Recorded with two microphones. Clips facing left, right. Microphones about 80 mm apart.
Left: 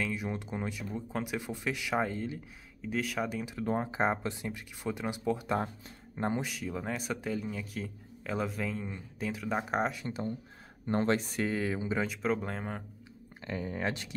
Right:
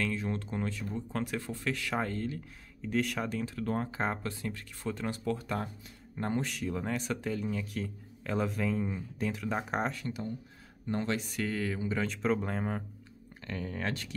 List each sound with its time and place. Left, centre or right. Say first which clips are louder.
0.0 s speech: right 1 dB; centre
6.4 s speech: right 2 dB; centre
10.9 s speech: left 4 dB; left
11.4 s speech: right 1 dB; centre
12.1 s speech: right 1 dB; centre
13.5 s speech: left 2 dB; centre